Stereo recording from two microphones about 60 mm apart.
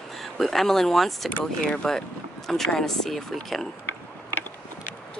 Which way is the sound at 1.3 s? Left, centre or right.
Centre.